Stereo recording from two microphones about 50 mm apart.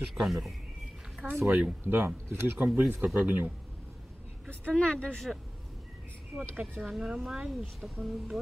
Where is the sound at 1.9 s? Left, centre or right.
Right.